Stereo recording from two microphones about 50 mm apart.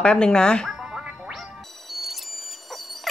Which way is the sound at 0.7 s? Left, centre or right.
Centre.